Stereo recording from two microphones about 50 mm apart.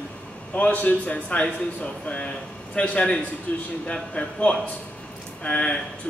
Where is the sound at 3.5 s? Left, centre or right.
Left.